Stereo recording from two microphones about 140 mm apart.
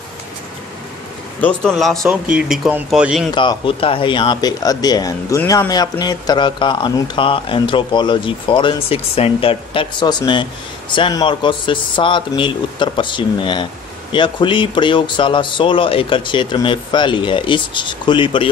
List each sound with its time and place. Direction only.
1.7 s speech: centre (ahead or behind)
3.3 s speech: 35° left (ahead or behind)